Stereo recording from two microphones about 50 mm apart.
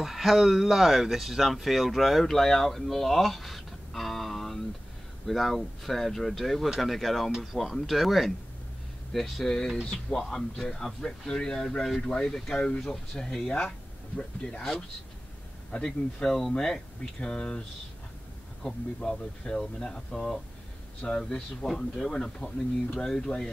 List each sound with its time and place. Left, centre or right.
0.0 s a man's voice: centre
13.7 s speech: centre
15.7 s a man's voice: centre
16.3 s a man's voice: centre